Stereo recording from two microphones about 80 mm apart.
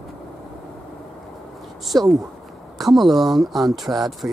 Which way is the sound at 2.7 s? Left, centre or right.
Centre.